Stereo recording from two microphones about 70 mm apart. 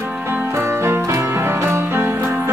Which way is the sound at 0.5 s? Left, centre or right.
Right.